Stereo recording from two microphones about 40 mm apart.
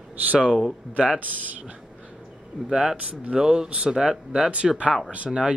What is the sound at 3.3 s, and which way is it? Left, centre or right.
Speech, centre.